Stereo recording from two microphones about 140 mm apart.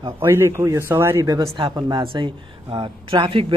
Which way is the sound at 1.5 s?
40° right (ahead or behind).